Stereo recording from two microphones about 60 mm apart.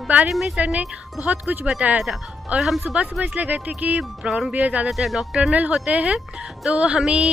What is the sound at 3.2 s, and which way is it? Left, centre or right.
Speech, right.